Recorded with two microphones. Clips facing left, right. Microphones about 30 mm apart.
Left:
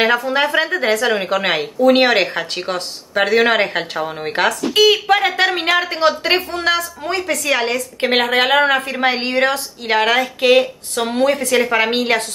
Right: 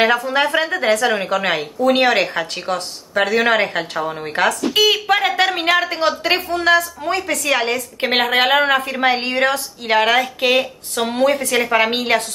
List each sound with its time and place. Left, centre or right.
0.0 s a woman's voice: centre
1.2 s speech: centre
4.5 s a woman's voice: centre
7.0 s a woman's voice: centre